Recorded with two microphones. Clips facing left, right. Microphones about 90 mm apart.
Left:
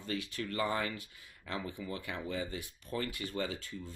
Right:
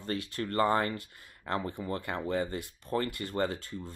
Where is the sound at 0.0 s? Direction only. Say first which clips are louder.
Right 4 dB; 45° right (ahead or behind).